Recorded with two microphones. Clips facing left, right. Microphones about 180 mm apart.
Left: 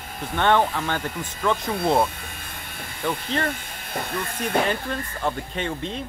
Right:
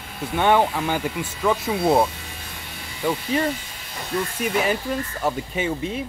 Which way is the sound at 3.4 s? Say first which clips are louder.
Right 3 dB; 55° left (ahead or behind).